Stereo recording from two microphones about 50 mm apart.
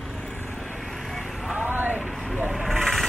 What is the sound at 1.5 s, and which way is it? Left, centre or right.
Vehicle, right.